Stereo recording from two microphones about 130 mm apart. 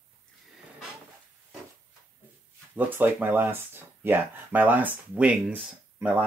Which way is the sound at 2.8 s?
15° right (ahead or behind).